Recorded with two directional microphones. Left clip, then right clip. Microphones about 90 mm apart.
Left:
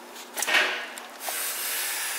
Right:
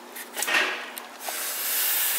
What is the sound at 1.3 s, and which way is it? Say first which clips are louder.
Hiss: even; centre (ahead or behind).